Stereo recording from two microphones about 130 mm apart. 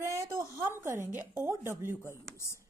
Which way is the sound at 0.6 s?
20° right (ahead or behind).